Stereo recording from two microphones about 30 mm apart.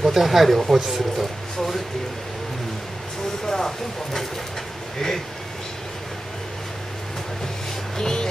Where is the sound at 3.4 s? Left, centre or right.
Centre.